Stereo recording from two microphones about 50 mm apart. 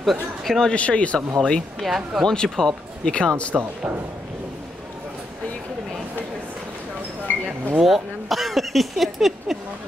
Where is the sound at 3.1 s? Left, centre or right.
Left.